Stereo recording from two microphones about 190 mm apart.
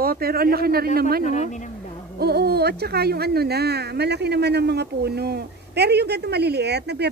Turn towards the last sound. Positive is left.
turn(degrees=-60)  # may be behind; listen again after turning